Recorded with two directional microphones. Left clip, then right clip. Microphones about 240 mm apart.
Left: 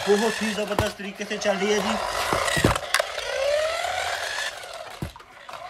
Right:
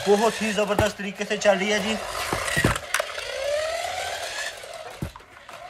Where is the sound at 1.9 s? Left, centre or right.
Left.